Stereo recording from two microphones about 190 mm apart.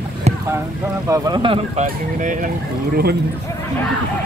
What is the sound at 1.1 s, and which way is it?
Speech, 20° right (ahead or behind).